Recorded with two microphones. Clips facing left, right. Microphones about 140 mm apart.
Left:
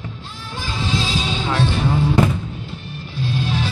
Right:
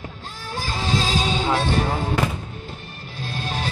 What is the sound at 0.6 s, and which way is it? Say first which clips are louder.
Music: even; 45° right (ahead or behind).